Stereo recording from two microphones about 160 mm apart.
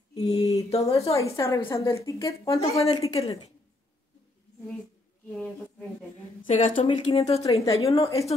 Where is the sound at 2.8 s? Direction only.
40° left (ahead or behind).